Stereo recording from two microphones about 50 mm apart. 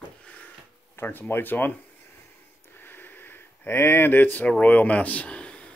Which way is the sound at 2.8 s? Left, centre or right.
Left.